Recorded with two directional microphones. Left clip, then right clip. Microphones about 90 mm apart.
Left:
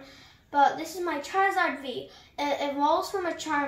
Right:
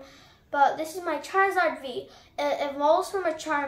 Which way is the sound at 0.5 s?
40° right (ahead or behind).